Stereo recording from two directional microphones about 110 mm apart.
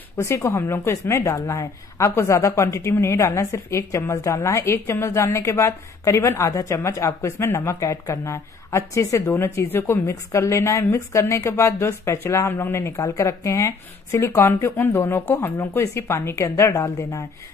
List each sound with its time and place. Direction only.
0.2 s a woman's voice: 30° left (ahead or behind)